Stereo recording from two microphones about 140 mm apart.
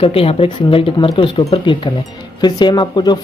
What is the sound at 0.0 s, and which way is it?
Speech, 40° left (ahead or behind).